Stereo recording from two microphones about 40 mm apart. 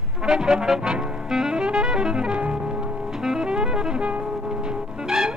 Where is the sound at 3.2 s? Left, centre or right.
Centre.